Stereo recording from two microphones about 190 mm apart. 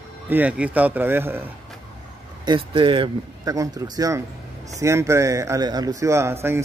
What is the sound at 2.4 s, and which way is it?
Speech, 25° right (ahead or behind).